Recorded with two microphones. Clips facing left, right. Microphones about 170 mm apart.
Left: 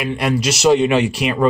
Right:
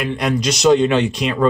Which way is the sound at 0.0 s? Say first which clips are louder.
Even; 5° left (ahead or behind).